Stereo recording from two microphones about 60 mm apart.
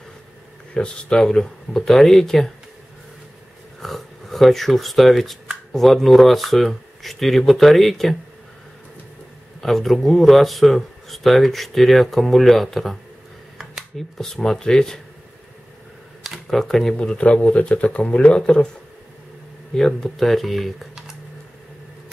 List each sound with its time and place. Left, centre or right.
0.7 s speech: centre
3.8 s speech: centre
9.6 s speech: centre
13.9 s speech: centre
16.2 s speech: centre
19.7 s speech: centre